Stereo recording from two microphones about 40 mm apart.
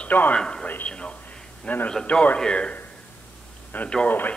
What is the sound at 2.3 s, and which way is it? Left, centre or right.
Speech, left.